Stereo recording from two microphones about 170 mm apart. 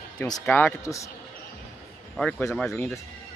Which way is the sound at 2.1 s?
5° left (ahead or behind).